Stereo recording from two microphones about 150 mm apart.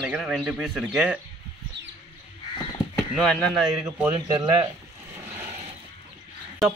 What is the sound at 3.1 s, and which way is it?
Speech, 5° left (ahead or behind).